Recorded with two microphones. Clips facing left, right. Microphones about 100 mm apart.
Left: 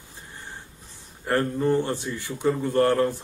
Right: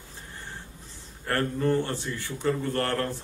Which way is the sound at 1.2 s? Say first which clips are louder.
Left 3 dB; 10° left (ahead or behind).